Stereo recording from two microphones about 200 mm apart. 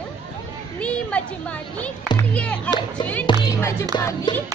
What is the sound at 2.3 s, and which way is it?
Speech, 5° left (ahead or behind).